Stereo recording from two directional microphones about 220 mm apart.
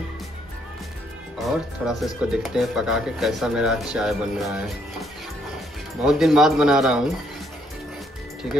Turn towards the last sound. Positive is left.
turn(degrees=-5)  # may be behind; listen again after turning